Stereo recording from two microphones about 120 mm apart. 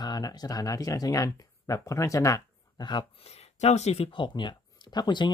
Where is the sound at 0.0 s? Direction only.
35° left (ahead or behind).